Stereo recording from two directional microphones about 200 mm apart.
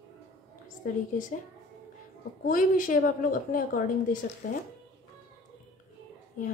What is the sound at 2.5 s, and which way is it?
A woman's voice, 40° left (ahead or behind).